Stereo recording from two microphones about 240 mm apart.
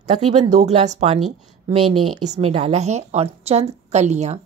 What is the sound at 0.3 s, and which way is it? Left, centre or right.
Speech, right.